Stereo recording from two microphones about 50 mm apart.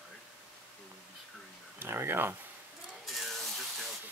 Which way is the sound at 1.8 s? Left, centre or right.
Right.